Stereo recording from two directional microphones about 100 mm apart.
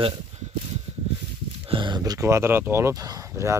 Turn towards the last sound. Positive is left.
turn(degrees=-30)  # may be behind; listen again after turning